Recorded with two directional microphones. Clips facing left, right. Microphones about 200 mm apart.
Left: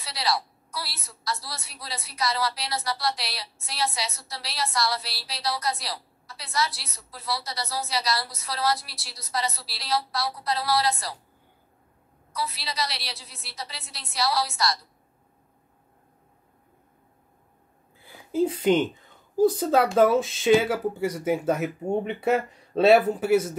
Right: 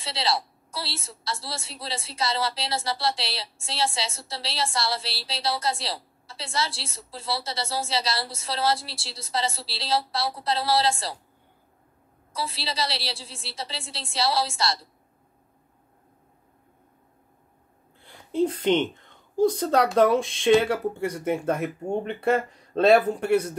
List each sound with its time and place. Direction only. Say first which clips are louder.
0.0 s a woman's voice: right 1 dB; 25° right (ahead or behind)
12.3 s a woman's voice: right 1 dB; 30° right (ahead or behind)
17.9 s speech: even; 5° left (ahead or behind)